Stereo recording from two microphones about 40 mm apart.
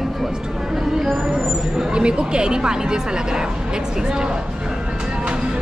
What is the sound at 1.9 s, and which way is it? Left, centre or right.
Speech, right.